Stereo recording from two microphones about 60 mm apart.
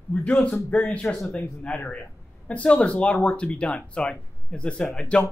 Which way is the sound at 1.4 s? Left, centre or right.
Left.